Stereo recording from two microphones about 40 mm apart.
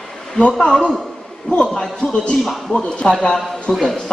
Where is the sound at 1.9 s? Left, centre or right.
Centre.